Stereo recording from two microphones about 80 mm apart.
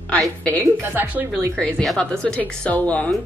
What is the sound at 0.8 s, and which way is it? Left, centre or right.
Speech, right.